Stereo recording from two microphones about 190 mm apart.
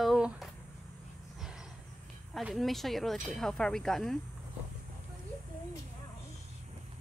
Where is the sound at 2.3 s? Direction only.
Centre (ahead or behind).